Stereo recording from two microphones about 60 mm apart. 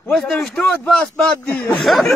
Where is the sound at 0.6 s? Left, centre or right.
Centre.